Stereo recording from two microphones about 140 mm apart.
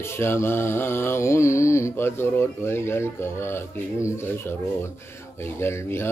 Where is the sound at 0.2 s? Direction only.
15° left (ahead or behind).